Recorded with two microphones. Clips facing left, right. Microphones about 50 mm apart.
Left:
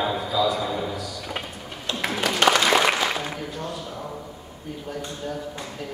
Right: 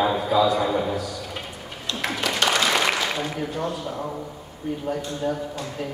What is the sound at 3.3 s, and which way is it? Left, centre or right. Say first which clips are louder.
Speech: right 4 dB; centre.